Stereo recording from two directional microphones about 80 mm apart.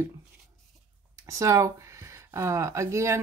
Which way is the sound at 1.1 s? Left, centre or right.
Right.